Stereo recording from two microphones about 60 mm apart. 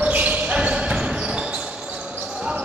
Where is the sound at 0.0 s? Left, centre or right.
Right.